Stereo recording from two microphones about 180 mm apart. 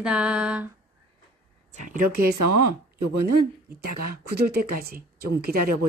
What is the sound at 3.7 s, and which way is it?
Speech, 55° right (ahead or behind).